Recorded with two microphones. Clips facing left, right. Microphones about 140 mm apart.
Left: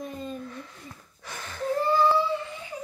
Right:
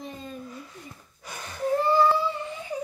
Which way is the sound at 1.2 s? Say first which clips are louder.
Right 2 dB; 15° right (ahead or behind).